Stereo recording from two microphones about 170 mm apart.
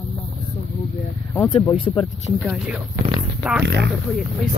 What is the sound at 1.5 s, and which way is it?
Speech, 30° left (ahead or behind).